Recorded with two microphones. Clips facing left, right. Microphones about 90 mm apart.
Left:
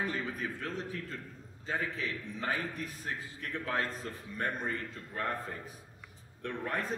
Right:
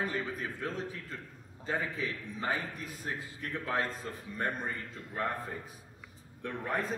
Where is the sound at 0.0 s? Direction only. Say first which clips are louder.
Right 1 dB; 15° right (ahead or behind).